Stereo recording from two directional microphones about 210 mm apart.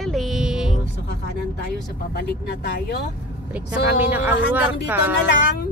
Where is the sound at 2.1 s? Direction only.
50° left (ahead or behind).